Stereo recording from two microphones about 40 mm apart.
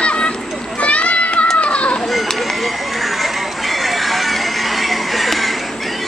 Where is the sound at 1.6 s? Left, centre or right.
Left.